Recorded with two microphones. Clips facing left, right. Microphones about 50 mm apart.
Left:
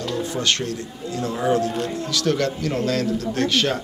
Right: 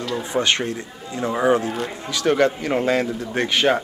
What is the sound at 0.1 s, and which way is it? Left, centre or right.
A man's voice, right.